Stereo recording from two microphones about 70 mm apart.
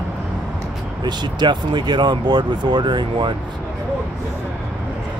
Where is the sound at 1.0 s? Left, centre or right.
Right.